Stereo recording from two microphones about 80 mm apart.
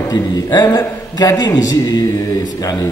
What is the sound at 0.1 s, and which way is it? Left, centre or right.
A man's voice, left.